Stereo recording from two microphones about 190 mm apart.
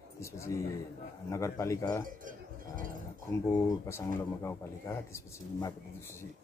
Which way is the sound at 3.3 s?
15° left (ahead or behind).